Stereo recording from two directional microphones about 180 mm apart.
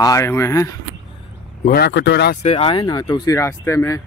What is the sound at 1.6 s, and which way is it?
Speech, 60° left (ahead or behind).